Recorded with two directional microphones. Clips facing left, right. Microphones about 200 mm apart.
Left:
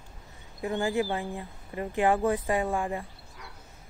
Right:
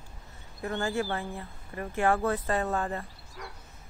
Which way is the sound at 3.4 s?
55° right (ahead or behind).